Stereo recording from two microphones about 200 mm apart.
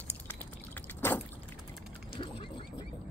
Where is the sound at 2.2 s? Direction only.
25° left (ahead or behind).